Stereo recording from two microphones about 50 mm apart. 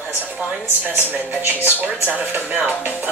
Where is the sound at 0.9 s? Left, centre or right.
Right.